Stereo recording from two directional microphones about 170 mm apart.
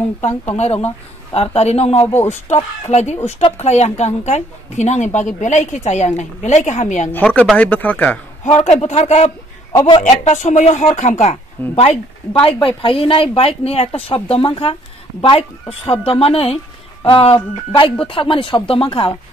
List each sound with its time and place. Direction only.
0.2 s a woman's voice: 40° left (ahead or behind)
7.1 s speech: 10° left (ahead or behind)
8.5 s a woman's voice: 40° left (ahead or behind)
12.3 s speech: 30° left (ahead or behind)
16.1 s speech: 35° left (ahead or behind)